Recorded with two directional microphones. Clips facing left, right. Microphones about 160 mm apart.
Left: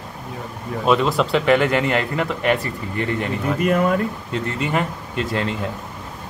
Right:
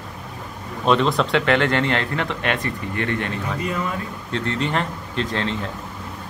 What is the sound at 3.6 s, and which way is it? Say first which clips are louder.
Speech: left 10 dB; 60° left (ahead or behind).